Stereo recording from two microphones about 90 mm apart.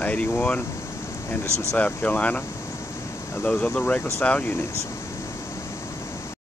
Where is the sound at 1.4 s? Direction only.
30° right (ahead or behind).